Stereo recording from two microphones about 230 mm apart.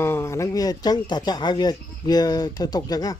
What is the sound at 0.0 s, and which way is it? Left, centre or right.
Speech, centre.